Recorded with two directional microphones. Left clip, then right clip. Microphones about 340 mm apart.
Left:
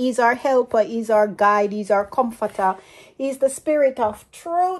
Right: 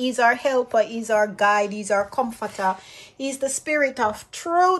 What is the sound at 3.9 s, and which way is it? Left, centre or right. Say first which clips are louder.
Speech: left 1 dB; centre.